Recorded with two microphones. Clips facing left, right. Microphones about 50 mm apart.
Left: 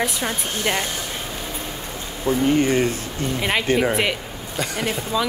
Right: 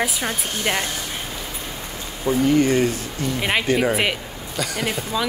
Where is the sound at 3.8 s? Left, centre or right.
Centre.